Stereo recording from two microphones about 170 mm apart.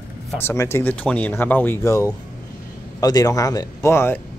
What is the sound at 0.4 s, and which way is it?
Speech, 15° left (ahead or behind).